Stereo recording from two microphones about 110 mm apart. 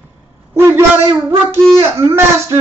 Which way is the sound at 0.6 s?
20° right (ahead or behind).